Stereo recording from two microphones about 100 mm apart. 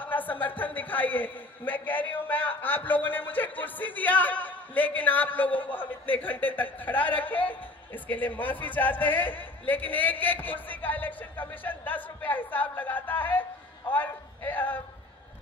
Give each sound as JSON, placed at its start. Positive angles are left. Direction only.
{"t": 0.0, "sound": "a man's voice", "side_deg": 15}